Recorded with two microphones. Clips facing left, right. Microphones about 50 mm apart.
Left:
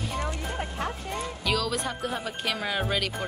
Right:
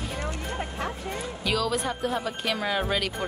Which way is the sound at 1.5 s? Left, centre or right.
Centre.